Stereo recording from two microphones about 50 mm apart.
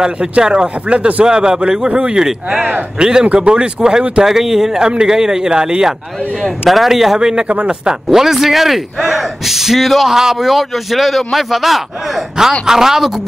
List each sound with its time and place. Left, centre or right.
0.0 s a man's voice: centre
6.7 s a man's voice: centre; by 8.0 s right
8.1 s a man's voice: centre